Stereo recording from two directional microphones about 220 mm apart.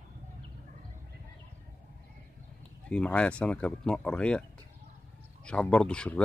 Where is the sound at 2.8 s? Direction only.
5° left (ahead or behind).